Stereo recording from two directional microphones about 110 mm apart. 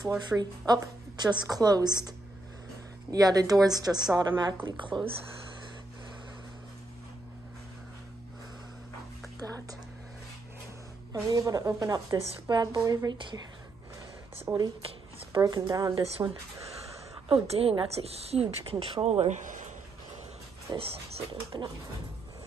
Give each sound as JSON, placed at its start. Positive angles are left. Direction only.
{"t": 0.3, "sound": "a woman's voice", "side_deg": -40}
{"t": 3.1, "sound": "a woman's voice", "side_deg": -35}
{"t": 9.4, "sound": "a sound", "side_deg": -35}
{"t": 11.1, "sound": "a woman's voice", "side_deg": -35}
{"t": 14.5, "sound": "speech", "side_deg": -25}
{"t": 15.3, "sound": "a woman's voice", "side_deg": -40}
{"t": 17.3, "sound": "a woman's voice", "side_deg": -60}
{"t": 20.7, "sound": "a woman's voice", "side_deg": -40}